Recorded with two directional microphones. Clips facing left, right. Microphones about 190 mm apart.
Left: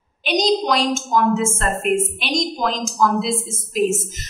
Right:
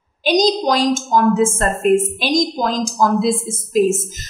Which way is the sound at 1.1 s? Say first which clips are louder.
Right 3 dB; 35° right (ahead or behind).